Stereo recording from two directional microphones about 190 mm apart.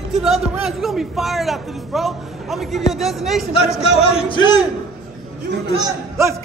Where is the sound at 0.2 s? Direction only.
Centre (ahead or behind).